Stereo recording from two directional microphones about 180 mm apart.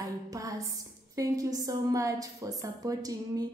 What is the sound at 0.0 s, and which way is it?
A woman's voice, 20° right (ahead or behind).